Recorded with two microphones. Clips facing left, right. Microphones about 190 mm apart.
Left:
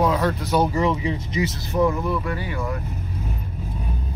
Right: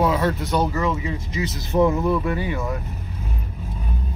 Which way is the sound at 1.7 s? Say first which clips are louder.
Right 4 dB; 25° right (ahead or behind).